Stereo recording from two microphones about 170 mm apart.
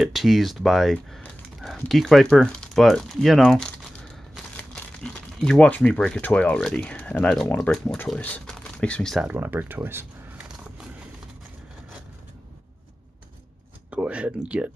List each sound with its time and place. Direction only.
0.0 s speech: centre (ahead or behind)
9.3 s a sound: 10° right (ahead or behind)
13.8 s speech: 5° right (ahead or behind)